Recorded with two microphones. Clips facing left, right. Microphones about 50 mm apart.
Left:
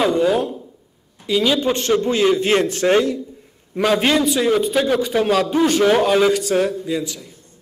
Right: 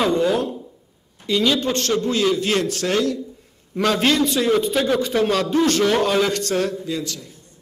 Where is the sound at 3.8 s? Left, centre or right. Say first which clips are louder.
Left 2 dB; centre.